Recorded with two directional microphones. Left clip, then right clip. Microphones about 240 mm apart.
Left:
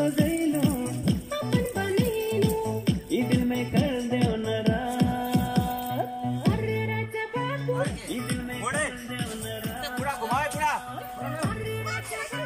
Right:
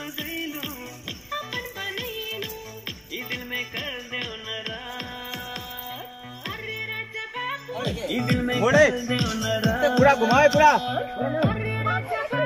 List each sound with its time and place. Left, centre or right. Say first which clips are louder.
0.0 s music: left 7 dB; left
8.2 s music: right 11 dB; right